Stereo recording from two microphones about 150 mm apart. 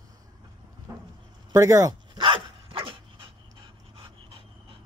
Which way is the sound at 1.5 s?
20° right (ahead or behind).